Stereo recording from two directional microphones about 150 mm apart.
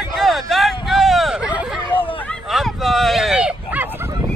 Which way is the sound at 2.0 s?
35° left (ahead or behind).